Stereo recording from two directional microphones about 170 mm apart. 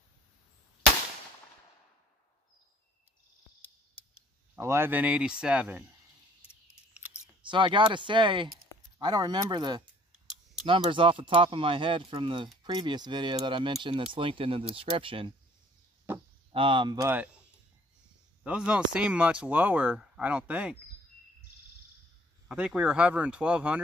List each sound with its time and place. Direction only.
4.1 s speech: 15° right (ahead or behind)
7.4 s speech: 30° right (ahead or behind)
16.5 s speech: 30° right (ahead or behind)
17.1 s speech: 10° right (ahead or behind)
18.4 s speech: 5° right (ahead or behind)
22.5 s speech: 5° right (ahead or behind)